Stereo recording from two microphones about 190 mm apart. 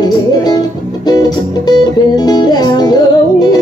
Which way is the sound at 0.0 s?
20° left (ahead or behind).